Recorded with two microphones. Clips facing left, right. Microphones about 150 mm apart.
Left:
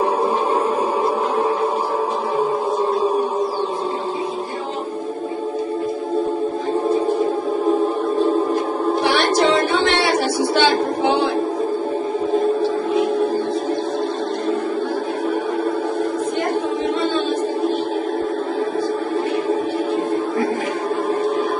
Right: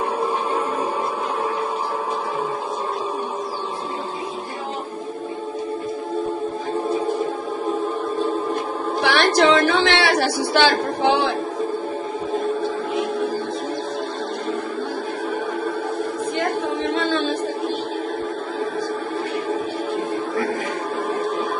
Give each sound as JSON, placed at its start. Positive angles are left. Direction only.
{"t": 9.0, "sound": "music", "side_deg": -75}